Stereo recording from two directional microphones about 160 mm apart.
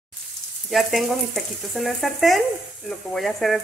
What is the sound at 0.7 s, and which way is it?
A woman's voice, centre (ahead or behind).